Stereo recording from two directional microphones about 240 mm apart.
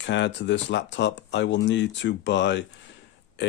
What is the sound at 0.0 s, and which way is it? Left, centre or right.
Speech, left.